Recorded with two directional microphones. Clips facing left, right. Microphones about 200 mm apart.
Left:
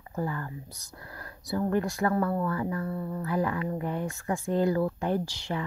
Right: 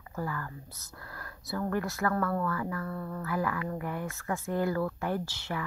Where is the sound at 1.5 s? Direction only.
20° left (ahead or behind).